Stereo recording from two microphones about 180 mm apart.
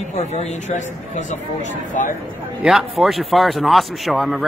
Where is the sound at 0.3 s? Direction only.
40° left (ahead or behind).